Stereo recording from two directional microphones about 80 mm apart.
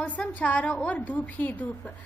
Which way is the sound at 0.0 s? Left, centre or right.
Centre.